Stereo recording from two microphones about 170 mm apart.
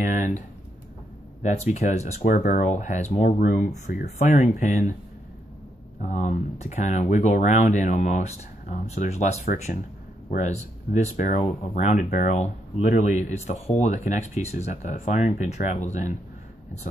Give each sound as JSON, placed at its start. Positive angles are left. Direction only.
{"t": 0.0, "sound": "speech", "side_deg": 50}
{"t": 1.4, "sound": "speech", "side_deg": 40}
{"t": 3.3, "sound": "speech", "side_deg": 55}
{"t": 5.9, "sound": "speech", "side_deg": 45}